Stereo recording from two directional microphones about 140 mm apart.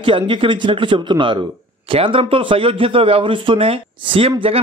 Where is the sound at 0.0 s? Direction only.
40° right (ahead or behind).